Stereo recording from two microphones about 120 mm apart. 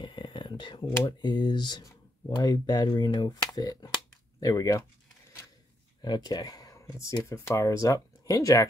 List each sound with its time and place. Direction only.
0.0 s speech: 40° left (ahead or behind)
6.0 s speech: 35° left (ahead or behind)